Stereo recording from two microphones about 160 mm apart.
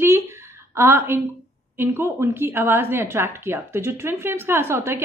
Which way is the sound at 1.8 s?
15° right (ahead or behind).